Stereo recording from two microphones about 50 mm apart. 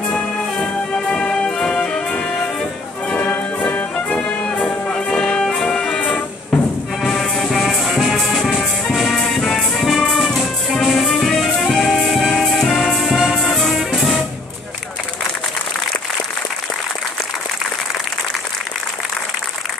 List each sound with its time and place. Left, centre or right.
0.0 s music: centre; by 4.0 s left
4.4 s music: centre
5.9 s music: left
7.0 s music: centre